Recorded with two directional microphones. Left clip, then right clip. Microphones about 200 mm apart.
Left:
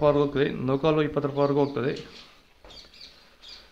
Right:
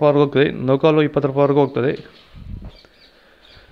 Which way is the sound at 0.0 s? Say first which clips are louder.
Right 7 dB; 30° right (ahead or behind).